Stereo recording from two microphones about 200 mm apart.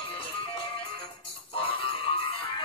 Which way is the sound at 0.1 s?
25° left (ahead or behind).